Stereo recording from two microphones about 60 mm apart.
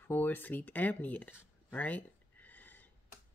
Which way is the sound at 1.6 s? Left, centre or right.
Left.